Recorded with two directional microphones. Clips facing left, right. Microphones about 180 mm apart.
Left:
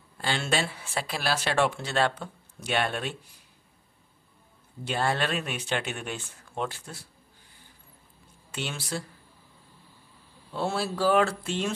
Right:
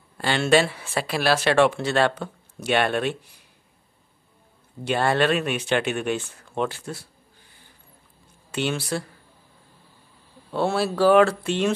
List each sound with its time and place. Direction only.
0.2 s speech: 70° right (ahead or behind)
4.8 s speech: 70° right (ahead or behind)
8.5 s speech: 70° right (ahead or behind)
10.5 s speech: 70° right (ahead or behind)